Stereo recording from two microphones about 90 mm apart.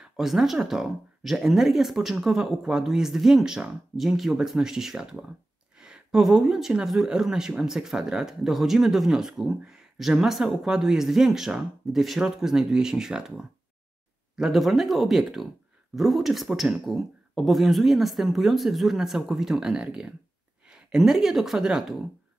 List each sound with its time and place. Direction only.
0.0 s speech: 5° right (ahead or behind)